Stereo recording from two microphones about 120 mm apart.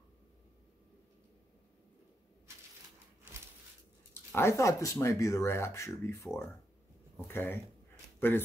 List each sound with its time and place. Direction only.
4.1 s speech: 20° left (ahead or behind)